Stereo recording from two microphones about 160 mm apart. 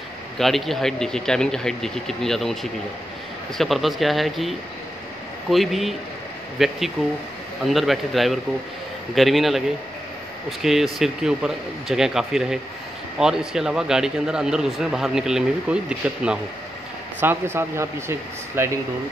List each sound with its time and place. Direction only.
0.4 s a man's voice: centre (ahead or behind)
10.6 s a man's voice: centre (ahead or behind)